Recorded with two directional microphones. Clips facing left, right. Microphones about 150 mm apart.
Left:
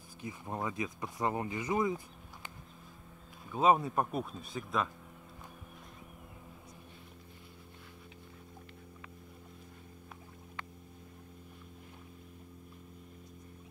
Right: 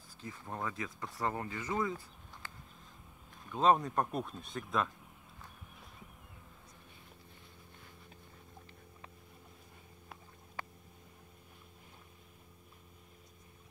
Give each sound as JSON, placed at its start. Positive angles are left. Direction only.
{"t": 0.2, "sound": "speech", "side_deg": 15}
{"t": 3.4, "sound": "speech", "side_deg": 10}